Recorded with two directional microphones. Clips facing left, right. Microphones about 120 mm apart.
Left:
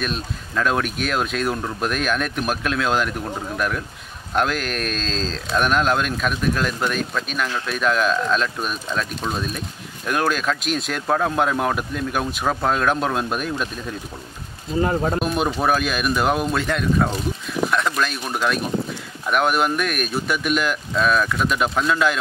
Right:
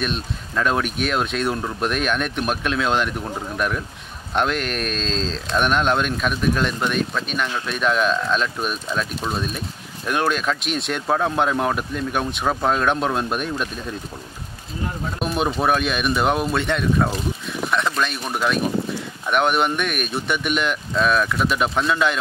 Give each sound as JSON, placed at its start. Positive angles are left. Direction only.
{"t": 0.0, "sound": "speech", "side_deg": 0}
{"t": 14.8, "sound": "speech", "side_deg": 60}
{"t": 15.1, "sound": "speech", "side_deg": 0}